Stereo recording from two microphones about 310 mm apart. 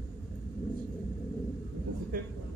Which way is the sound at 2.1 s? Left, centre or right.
Right.